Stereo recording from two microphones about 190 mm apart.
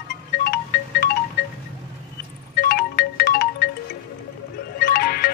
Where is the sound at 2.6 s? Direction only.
55° left (ahead or behind).